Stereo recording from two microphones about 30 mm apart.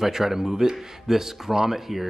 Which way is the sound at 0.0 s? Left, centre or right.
Centre.